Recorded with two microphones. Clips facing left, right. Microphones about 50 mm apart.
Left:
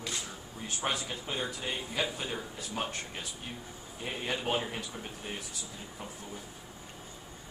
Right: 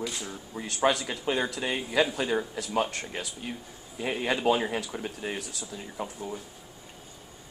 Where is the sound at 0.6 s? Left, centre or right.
Right.